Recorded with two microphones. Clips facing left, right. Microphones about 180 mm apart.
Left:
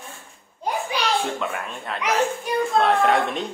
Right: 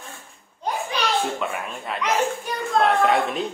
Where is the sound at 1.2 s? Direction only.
Centre (ahead or behind).